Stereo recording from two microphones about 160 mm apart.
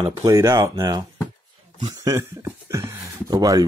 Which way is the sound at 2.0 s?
20° right (ahead or behind).